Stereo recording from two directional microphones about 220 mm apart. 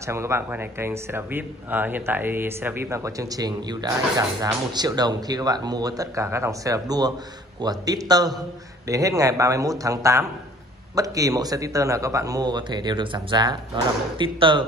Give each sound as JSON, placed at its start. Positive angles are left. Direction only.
{"t": 0.0, "sound": "speech", "side_deg": -10}